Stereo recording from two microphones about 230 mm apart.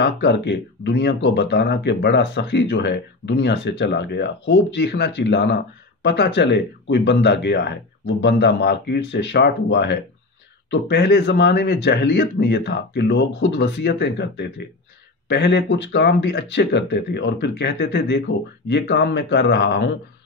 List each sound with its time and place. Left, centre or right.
0.0 s speech: left